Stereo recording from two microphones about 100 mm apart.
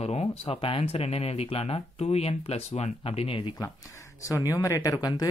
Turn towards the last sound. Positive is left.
turn(degrees=35)  # may be behind; listen again after turning